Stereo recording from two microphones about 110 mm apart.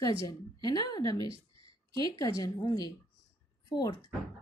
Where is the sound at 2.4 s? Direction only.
35° left (ahead or behind).